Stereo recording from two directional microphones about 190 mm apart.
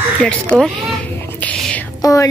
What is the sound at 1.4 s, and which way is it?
Whispering, 5° left (ahead or behind).